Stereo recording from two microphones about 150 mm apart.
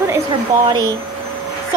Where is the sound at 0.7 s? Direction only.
30° right (ahead or behind).